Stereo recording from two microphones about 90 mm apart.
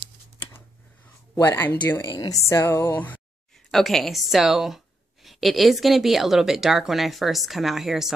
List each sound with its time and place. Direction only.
1.3 s music: 25° left (ahead or behind)
2.1 s a woman's voice: 45° left (ahead or behind)
2.4 s music: 30° left (ahead or behind)
3.5 s speech: 5° left (ahead or behind)